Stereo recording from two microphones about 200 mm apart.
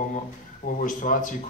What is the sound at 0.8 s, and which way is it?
Speech, 40° left (ahead or behind).